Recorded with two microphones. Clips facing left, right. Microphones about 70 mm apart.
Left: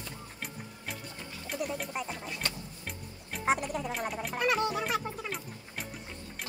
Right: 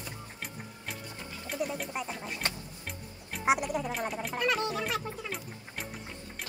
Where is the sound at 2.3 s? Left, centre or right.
Right.